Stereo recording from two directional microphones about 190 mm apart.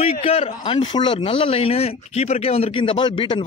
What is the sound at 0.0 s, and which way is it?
Speech, 35° left (ahead or behind).